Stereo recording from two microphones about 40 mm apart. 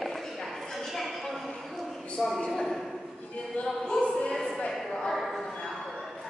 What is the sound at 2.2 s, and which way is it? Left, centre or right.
Speech, centre.